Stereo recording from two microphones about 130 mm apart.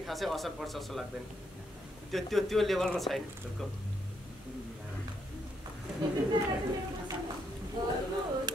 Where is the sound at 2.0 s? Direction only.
Centre (ahead or behind).